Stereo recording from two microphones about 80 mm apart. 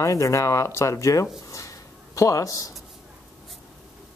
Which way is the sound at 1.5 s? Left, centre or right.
Left.